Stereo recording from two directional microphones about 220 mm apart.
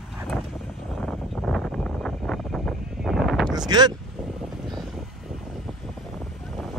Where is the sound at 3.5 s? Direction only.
20° right (ahead or behind).